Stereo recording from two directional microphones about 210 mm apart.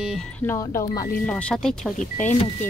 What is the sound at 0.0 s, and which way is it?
Speech, centre (ahead or behind).